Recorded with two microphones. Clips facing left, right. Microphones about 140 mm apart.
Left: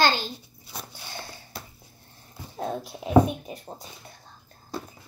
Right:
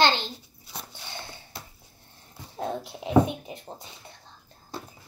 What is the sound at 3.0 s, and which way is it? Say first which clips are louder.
Speech: left 2 dB; 20° right (ahead or behind).